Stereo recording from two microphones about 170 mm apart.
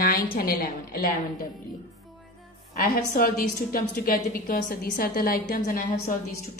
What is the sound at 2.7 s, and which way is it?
A woman's voice, 60° left (ahead or behind).